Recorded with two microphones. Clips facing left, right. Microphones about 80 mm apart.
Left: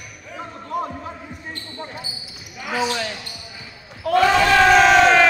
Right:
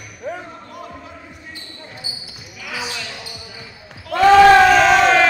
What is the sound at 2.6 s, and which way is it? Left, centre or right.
Basketball bounce, left.